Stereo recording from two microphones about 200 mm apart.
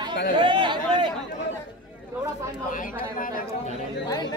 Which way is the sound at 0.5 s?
25° right (ahead or behind).